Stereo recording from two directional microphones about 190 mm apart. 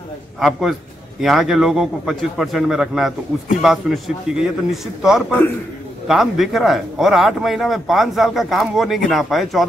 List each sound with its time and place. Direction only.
0.4 s speech: centre (ahead or behind)